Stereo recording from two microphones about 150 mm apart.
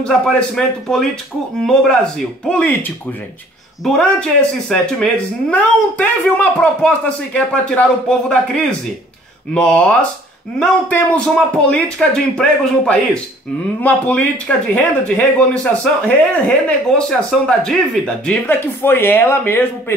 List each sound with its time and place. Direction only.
0.0 s speech: 5° left (ahead or behind)
9.5 s speech: 5° left (ahead or behind)